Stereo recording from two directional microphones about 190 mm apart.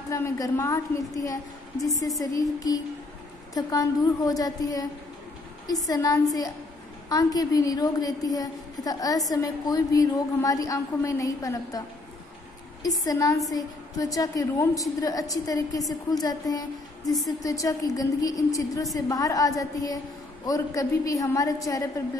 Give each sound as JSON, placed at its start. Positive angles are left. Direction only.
{"t": 0.1, "sound": "a woman's voice", "side_deg": 15}
{"t": 12.8, "sound": "a woman's voice", "side_deg": 20}